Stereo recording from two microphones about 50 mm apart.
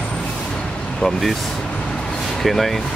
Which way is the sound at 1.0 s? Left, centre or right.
Centre.